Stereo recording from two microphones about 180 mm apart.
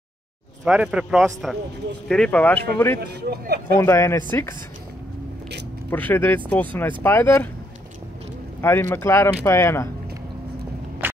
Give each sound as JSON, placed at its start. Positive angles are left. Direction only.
{"t": 0.7, "sound": "a man's voice", "side_deg": -5}
{"t": 3.0, "sound": "speech", "side_deg": -60}
{"t": 3.7, "sound": "speech", "side_deg": 15}
{"t": 5.9, "sound": "speech", "side_deg": 10}
{"t": 8.5, "sound": "speech", "side_deg": 15}